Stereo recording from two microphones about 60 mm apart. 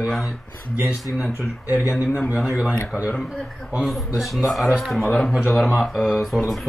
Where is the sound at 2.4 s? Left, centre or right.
Centre.